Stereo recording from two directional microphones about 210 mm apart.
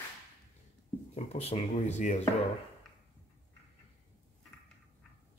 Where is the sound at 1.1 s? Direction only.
30° left (ahead or behind).